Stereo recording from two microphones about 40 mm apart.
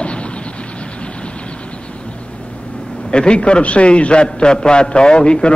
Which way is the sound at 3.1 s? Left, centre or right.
Left.